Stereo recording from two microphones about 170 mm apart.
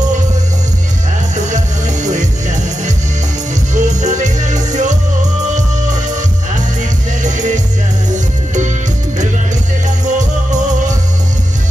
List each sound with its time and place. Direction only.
2.0 s music: 45° right (ahead or behind)
7.2 s music: 45° right (ahead or behind)
10.0 s music: 45° right (ahead or behind)